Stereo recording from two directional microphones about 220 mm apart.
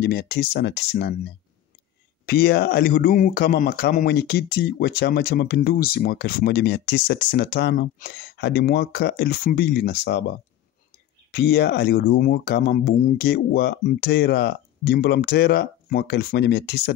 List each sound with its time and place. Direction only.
0.0 s speech: 45° left (ahead or behind)
2.2 s speech: 45° left (ahead or behind)
11.3 s speech: 50° left (ahead or behind)